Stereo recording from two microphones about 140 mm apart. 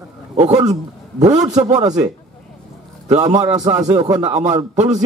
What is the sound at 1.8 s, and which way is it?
Speech, 30° right (ahead or behind).